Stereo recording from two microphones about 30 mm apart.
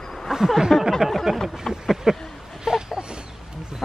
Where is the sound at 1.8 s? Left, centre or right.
Centre.